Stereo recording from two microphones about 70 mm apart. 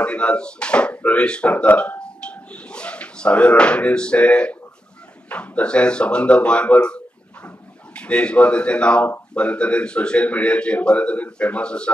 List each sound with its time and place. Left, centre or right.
0.0 s a man's voice: centre